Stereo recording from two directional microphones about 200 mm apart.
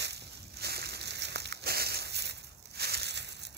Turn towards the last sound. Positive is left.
turn(degrees=-55)  # may be behind; listen again after turning